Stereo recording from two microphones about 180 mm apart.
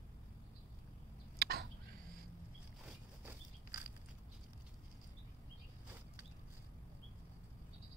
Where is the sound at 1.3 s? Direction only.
60° right (ahead or behind).